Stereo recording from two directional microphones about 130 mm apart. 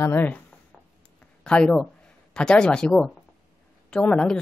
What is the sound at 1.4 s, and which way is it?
A woman's voice, 5° left (ahead or behind).